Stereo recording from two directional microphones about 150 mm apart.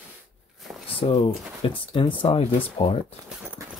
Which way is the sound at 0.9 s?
40° left (ahead or behind).